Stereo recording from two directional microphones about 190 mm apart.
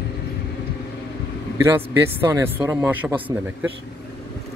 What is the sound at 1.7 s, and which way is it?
A man's voice, 15° right (ahead or behind).